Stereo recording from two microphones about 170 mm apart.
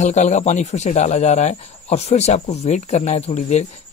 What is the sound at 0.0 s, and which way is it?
Speech, 45° left (ahead or behind).